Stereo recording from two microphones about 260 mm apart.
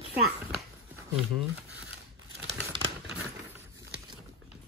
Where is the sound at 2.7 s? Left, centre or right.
Centre.